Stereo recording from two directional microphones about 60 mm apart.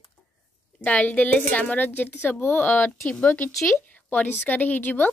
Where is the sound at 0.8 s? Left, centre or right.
Left.